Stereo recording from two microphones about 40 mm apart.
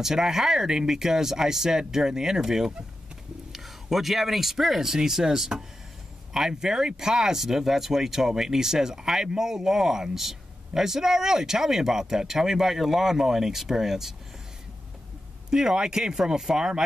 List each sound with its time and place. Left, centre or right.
0.0 s speech: centre
15.5 s speech: centre